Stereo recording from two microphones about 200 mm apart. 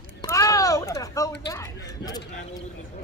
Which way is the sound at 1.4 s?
15° left (ahead or behind).